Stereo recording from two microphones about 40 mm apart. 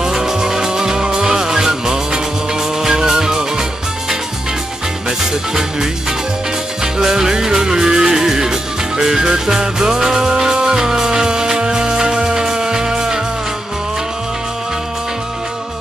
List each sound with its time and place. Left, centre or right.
0.0 s music: centre
5.5 s music: centre